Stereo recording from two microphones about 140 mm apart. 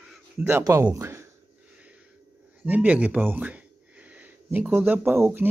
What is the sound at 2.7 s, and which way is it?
Speech, 10° right (ahead or behind).